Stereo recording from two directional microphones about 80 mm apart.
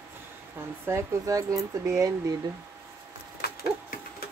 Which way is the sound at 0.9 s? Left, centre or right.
Right.